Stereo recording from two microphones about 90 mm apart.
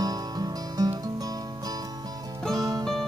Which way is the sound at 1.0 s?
45° right (ahead or behind).